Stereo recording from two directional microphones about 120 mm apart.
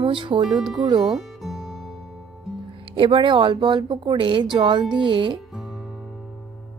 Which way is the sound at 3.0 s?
45° right (ahead or behind).